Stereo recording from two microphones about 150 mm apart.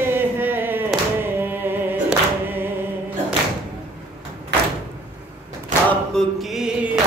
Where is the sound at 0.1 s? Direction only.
15° right (ahead or behind).